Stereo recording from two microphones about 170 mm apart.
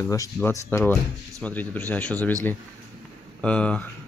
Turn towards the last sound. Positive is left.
turn(degrees=5)  # may be behind; listen again after turning